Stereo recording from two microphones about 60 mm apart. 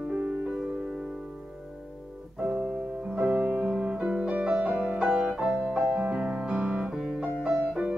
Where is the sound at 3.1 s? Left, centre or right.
Centre.